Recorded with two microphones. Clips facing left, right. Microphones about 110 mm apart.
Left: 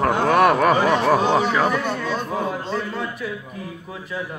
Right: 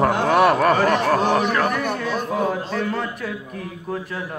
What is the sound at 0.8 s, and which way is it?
Speech, 15° left (ahead or behind).